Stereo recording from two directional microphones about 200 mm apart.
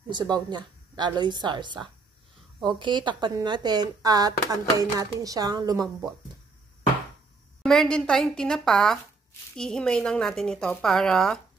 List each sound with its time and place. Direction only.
0.1 s speech: 20° right (ahead or behind)
7.6 s a woman's voice: centre (ahead or behind)